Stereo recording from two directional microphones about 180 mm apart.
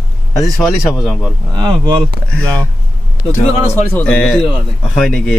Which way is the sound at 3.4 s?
35° left (ahead or behind).